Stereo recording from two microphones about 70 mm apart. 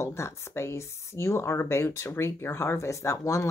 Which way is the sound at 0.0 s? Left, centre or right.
Left.